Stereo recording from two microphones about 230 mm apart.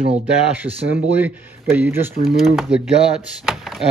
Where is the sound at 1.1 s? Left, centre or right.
Centre.